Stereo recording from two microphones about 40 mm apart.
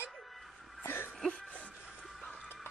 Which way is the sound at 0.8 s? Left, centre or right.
Left.